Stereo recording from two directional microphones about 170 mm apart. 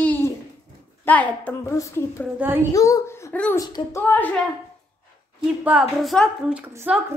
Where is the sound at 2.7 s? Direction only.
20° left (ahead or behind).